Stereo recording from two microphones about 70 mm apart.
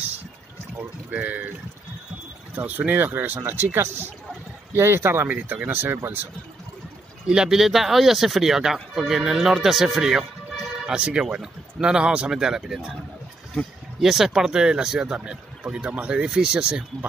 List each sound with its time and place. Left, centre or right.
0.7 s speech: right
2.5 s speech: right
7.2 s speech: centre
10.9 s speech: centre
14.0 s speech: centre